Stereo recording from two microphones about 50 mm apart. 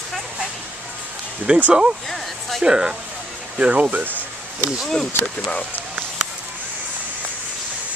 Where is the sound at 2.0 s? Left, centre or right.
Centre.